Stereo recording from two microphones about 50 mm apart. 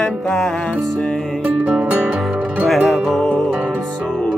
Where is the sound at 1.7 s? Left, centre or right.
Right.